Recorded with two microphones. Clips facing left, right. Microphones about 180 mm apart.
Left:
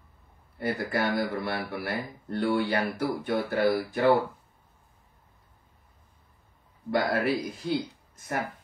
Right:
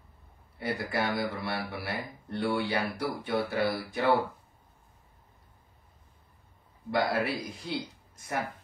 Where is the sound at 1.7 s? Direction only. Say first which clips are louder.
Left 4 dB; centre (ahead or behind).